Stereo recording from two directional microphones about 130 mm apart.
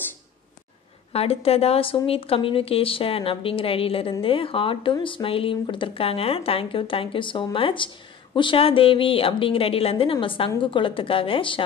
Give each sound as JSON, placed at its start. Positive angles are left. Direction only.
{"t": 1.1, "sound": "speech", "side_deg": 50}